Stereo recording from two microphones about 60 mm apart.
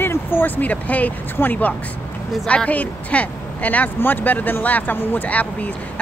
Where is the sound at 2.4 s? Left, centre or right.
Centre.